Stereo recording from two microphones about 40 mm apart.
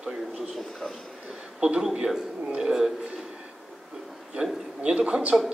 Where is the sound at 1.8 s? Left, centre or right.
Centre.